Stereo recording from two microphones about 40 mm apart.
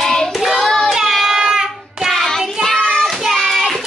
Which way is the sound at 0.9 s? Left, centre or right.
Centre.